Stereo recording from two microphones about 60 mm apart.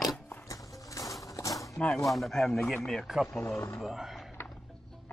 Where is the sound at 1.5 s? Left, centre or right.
Centre.